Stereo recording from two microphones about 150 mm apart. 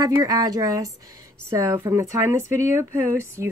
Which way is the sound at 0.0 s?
25° right (ahead or behind).